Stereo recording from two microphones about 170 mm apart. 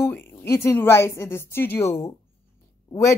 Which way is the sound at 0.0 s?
10° left (ahead or behind).